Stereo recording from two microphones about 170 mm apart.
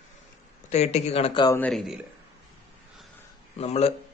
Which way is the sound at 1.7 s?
Centre (ahead or behind).